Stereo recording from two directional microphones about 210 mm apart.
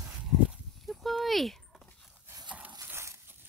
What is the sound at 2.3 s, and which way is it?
Dog, 20° right (ahead or behind).